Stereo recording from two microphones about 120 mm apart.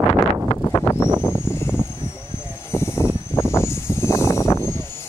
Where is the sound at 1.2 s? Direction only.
20° left (ahead or behind).